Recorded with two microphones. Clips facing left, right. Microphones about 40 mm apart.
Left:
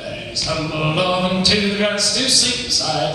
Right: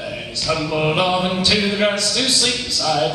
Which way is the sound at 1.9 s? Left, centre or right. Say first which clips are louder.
Even; right.